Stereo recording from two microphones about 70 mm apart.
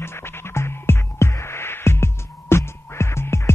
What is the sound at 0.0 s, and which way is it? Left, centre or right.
Music, left.